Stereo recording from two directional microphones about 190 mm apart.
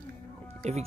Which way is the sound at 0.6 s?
35° right (ahead or behind).